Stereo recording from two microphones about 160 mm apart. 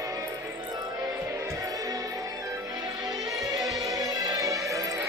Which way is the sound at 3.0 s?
20° right (ahead or behind).